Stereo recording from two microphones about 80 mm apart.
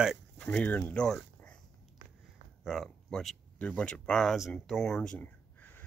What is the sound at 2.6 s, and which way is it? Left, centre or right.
Speech, centre.